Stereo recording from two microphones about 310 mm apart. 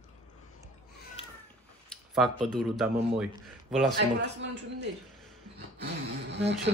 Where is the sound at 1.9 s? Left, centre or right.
Centre.